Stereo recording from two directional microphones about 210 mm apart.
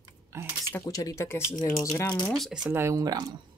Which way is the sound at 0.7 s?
15° left (ahead or behind).